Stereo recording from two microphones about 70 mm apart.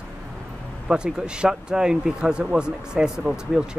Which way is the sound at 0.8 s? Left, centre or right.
Centre.